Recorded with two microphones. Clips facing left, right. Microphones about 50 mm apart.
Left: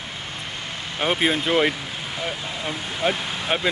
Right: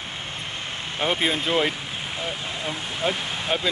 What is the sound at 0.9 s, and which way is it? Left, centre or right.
Speech, left.